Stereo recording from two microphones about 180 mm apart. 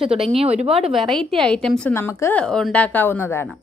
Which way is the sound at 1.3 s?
5° left (ahead or behind).